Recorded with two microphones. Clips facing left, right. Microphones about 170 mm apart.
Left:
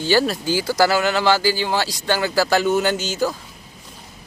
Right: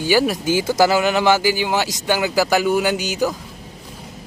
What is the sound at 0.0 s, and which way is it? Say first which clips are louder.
Speech: right 1 dB; 15° right (ahead or behind).